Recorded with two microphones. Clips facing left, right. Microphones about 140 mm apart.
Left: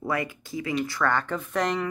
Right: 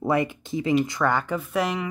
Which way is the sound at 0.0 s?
25° right (ahead or behind).